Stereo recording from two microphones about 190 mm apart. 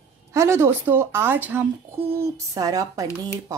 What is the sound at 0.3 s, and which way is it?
Speech, 15° right (ahead or behind).